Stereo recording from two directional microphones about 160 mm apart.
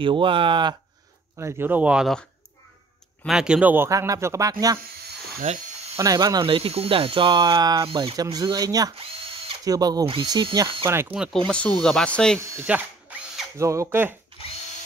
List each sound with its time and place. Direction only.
0.0 s speech: 30° right (ahead or behind)
1.4 s speech: 10° right (ahead or behind)
3.3 s speech: 5° right (ahead or behind); by 4.7 s 20° right (ahead or behind)
5.9 s speech: 20° right (ahead or behind)
8.9 s drill: 35° right (ahead or behind)
9.7 s speech: 25° right (ahead or behind)
11.1 s speech: 5° left (ahead or behind)
12.4 s speech: 10° right (ahead or behind)
14.4 s drill: 35° left (ahead or behind)